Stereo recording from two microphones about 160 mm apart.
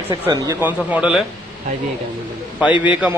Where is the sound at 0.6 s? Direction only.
5° right (ahead or behind).